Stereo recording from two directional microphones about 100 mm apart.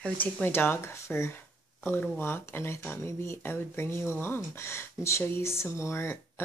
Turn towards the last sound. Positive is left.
turn(degrees=25)  # may be behind; listen again after turning